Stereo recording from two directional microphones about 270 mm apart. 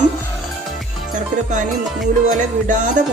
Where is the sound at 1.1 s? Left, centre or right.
Right.